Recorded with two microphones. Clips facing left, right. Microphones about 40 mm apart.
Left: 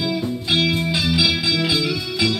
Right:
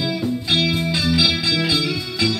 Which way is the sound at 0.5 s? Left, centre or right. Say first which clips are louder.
Left 1 dB; centre.